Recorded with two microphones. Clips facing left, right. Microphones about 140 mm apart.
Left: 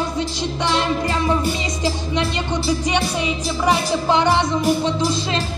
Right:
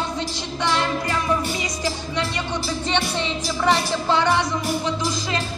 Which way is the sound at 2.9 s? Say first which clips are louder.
Left 3 dB; 10° left (ahead or behind).